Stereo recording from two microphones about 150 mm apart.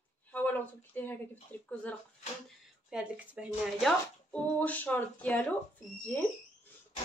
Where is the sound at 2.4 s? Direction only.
5° right (ahead or behind); by 5.4 s 10° left (ahead or behind).